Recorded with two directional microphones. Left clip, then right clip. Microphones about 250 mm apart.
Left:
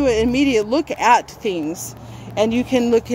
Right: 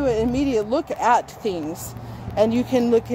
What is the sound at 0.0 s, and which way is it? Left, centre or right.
Speech, centre.